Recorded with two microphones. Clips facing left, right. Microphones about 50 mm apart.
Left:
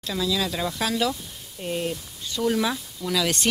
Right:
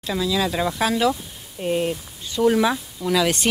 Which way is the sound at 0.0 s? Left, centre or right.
Centre.